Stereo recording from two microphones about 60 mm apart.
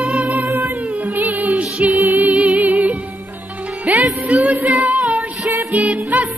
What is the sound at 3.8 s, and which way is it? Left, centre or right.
Music, right.